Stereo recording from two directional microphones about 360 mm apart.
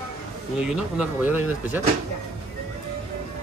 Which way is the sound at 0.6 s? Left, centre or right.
Centre.